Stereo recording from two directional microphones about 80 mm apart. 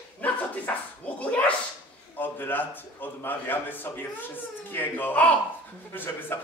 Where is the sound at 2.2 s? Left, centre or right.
Left.